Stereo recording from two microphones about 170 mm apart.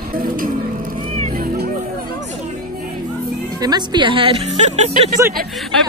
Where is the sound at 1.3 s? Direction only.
55° right (ahead or behind).